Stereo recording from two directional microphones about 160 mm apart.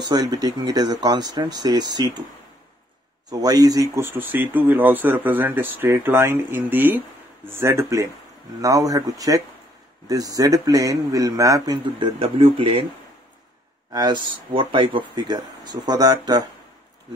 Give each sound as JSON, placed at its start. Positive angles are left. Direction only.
{"t": 0.0, "sound": "a man's voice", "side_deg": -25}
{"t": 3.3, "sound": "a man's voice", "side_deg": -25}
{"t": 13.9, "sound": "a man's voice", "side_deg": -25}